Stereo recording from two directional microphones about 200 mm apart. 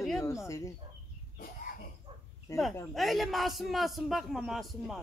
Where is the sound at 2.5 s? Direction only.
15° left (ahead or behind).